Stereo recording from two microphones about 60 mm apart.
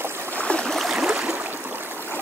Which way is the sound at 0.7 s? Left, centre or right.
Centre.